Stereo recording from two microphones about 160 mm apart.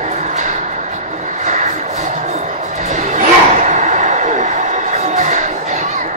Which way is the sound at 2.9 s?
50° right (ahead or behind).